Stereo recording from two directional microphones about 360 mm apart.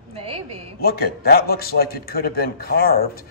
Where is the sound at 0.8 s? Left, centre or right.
Left.